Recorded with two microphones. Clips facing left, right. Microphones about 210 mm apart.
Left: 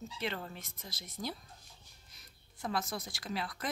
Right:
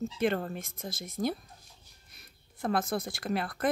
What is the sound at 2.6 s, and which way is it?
Speech, 55° right (ahead or behind).